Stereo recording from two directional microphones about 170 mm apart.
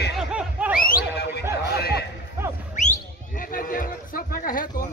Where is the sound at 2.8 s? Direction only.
50° left (ahead or behind).